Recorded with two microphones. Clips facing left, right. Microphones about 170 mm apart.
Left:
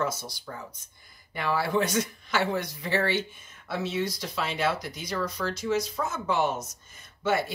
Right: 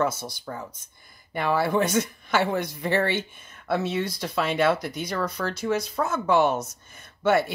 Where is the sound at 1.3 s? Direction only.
55° right (ahead or behind).